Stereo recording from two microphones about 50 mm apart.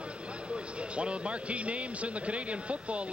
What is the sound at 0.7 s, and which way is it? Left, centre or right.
Speech, right.